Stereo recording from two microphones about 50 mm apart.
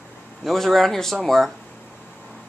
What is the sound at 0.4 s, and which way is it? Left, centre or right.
Speech, centre.